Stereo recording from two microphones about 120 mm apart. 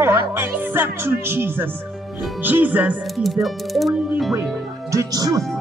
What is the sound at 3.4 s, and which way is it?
Speech, centre (ahead or behind).